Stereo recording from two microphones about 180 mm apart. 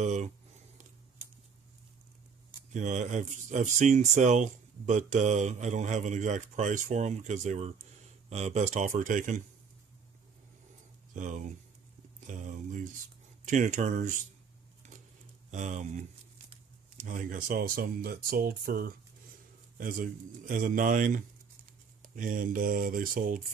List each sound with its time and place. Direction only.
0.0 s speech: 40° right (ahead or behind)
2.7 s speech: 40° right (ahead or behind)
11.1 s speech: 45° right (ahead or behind)
12.3 s a sound: 45° right (ahead or behind)
13.5 s speech: 45° right (ahead or behind)
15.5 s speech: 40° right (ahead or behind)
16.9 s speech: 45° right (ahead or behind)